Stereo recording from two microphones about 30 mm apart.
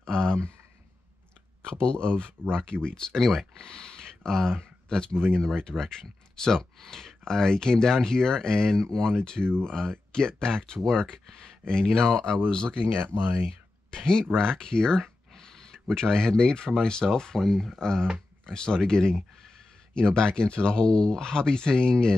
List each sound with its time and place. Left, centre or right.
0.0 s speech: left
1.7 s speech: left
3.1 s speech: centre
3.5 s speech: left
17.4 s speech: centre
17.7 s speech: left